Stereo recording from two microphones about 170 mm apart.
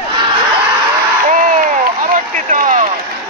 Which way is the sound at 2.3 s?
50° right (ahead or behind).